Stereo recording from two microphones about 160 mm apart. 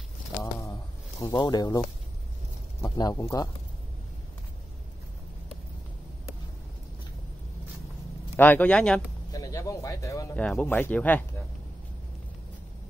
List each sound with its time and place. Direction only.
0.4 s a sound: 20° left (ahead or behind)
1.2 s speech: 25° left (ahead or behind)
8.4 s speech: 10° left (ahead or behind)
9.3 s speech: 20° left (ahead or behind)
10.3 s speech: 10° left (ahead or behind)